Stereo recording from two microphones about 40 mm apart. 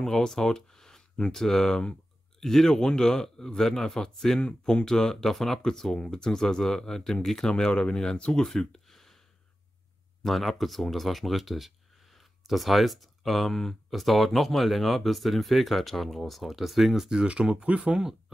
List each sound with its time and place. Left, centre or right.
0.0 s speech: centre
10.2 s speech: centre
17.3 s speech: right